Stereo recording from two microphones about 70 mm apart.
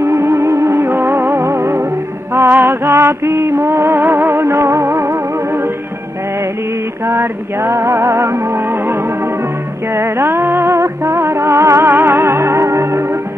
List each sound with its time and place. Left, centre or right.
0.0 s music: right
7.1 s music: right
9.9 s music: right